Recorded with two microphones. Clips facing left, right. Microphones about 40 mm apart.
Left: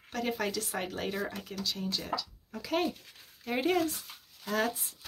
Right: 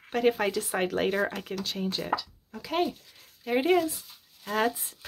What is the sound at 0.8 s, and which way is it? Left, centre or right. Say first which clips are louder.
Speech: right 8 dB; right.